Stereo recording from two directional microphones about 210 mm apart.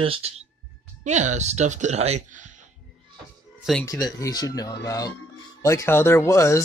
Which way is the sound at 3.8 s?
15° left (ahead or behind).